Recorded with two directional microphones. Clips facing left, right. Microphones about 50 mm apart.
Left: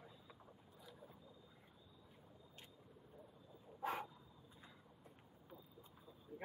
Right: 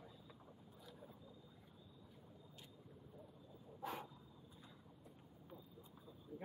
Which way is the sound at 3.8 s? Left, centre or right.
Left.